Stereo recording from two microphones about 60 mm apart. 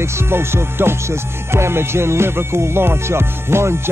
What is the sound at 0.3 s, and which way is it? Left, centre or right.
Music, right.